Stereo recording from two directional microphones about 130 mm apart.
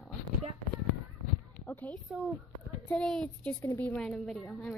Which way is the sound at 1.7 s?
15° left (ahead or behind).